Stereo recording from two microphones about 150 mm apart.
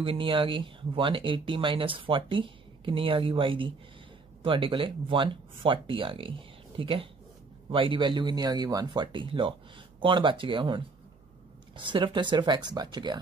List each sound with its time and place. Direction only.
0.0 s speech: 35° right (ahead or behind)